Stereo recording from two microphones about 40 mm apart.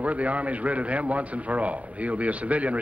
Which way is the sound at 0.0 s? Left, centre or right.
Right.